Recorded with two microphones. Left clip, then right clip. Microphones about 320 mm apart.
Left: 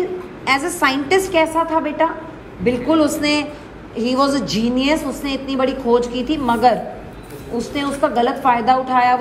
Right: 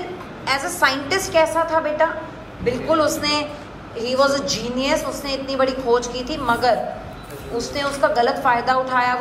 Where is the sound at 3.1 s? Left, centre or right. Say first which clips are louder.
Left 3 dB; centre.